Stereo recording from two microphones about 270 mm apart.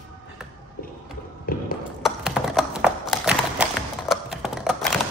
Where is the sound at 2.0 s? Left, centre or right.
Centre.